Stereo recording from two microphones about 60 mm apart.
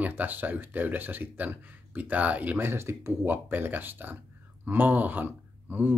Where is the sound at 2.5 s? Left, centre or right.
Right.